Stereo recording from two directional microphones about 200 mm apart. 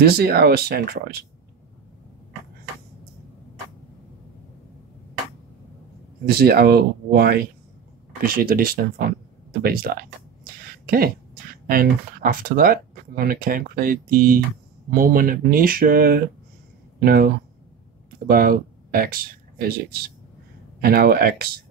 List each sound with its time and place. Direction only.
0.0 s speech: 50° right (ahead or behind)
6.2 s speech: 50° right (ahead or behind)
20.8 s speech: 50° right (ahead or behind)